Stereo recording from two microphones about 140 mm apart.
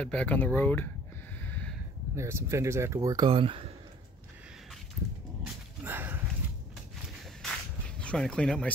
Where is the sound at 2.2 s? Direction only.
20° right (ahead or behind); by 3.7 s 40° right (ahead or behind).